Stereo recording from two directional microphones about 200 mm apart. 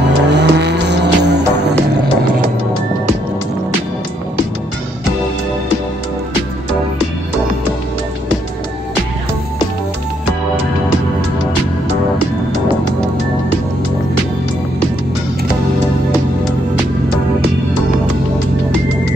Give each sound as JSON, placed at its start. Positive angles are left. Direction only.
{"t": 0.0, "sound": "music", "side_deg": -60}